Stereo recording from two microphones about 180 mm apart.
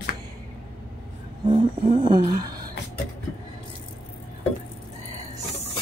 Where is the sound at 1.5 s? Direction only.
25° right (ahead or behind).